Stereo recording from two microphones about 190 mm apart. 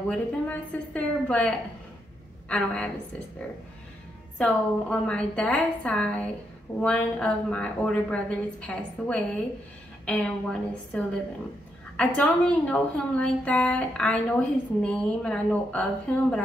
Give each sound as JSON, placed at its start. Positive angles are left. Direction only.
{"t": 0.1, "sound": "a woman's voice", "side_deg": 5}
{"t": 2.5, "sound": "a woman's voice", "side_deg": 5}
{"t": 4.4, "sound": "a woman's voice", "side_deg": 5}